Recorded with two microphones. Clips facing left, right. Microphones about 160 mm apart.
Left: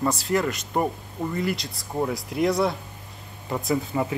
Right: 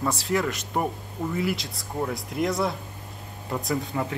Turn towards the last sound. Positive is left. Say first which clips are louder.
# left 3 dB
turn(degrees=5)  # may be behind; listen again after turning